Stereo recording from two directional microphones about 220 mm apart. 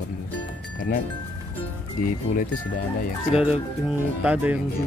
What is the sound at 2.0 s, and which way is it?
Speech, 40° left (ahead or behind).